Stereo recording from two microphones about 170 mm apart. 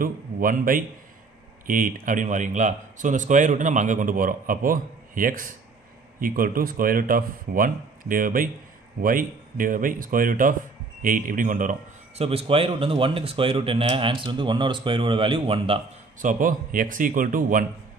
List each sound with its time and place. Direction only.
0.0 s speech: 55° right (ahead or behind)
12.2 s speech: 35° right (ahead or behind)
16.2 s speech: 50° right (ahead or behind)